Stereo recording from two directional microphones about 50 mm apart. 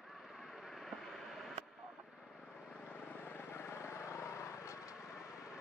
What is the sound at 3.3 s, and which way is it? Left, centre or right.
Vehicle, left.